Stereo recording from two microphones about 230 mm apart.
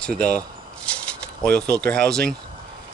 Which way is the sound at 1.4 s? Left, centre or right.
Centre.